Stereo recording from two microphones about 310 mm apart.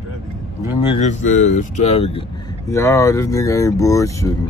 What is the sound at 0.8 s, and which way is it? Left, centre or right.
Speech, left.